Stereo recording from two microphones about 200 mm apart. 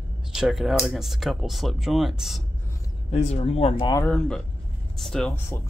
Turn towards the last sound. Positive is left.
turn(degrees=10)  # may be behind; listen again after turning